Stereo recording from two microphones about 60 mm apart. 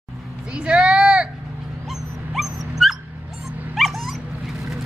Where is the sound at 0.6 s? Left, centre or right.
Centre.